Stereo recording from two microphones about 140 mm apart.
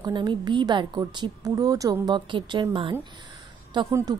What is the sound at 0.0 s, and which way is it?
A woman's voice, 30° right (ahead or behind).